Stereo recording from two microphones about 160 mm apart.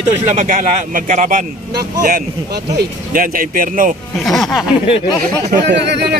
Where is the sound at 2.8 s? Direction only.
60° right (ahead or behind).